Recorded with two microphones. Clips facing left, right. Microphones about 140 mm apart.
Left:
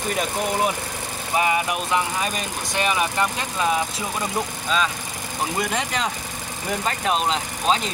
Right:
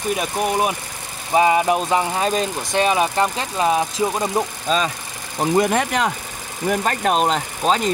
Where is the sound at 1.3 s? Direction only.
30° right (ahead or behind).